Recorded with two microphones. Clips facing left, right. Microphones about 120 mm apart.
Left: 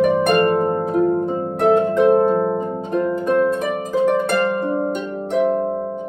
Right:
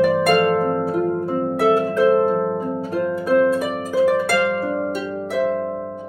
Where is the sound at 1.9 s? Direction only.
25° left (ahead or behind).